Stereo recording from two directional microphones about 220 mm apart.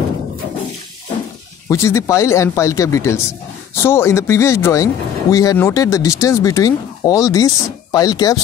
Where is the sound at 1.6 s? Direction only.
10° left (ahead or behind).